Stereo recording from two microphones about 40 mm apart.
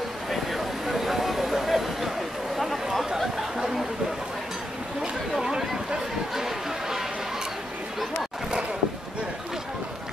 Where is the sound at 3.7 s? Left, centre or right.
Centre.